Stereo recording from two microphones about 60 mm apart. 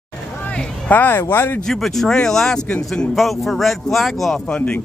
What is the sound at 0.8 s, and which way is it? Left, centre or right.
Speech, left.